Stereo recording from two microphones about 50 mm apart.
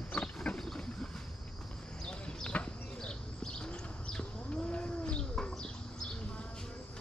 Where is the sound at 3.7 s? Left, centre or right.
Left.